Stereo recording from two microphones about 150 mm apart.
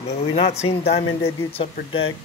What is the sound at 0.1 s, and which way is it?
Speech, 45° left (ahead or behind).